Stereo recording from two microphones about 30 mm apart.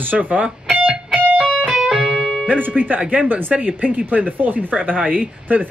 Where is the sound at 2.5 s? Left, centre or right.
Right.